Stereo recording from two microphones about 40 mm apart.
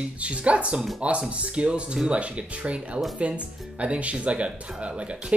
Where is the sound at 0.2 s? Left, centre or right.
Right.